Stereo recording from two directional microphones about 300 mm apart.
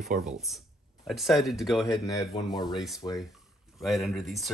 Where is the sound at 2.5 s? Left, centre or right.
Centre.